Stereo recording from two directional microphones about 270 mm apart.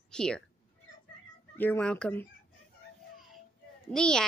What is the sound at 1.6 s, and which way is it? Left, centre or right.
Speech, centre.